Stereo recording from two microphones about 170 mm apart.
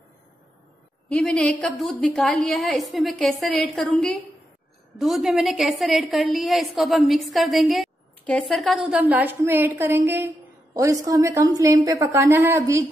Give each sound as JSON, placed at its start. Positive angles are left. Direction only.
{"t": 1.0, "sound": "a woman's voice", "side_deg": 5}